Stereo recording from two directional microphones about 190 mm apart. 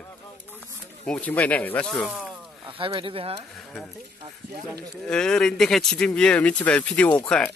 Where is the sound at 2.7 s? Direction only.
30° right (ahead or behind).